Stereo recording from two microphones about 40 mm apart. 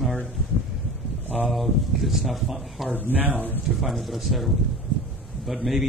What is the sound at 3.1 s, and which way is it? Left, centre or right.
Speech, right.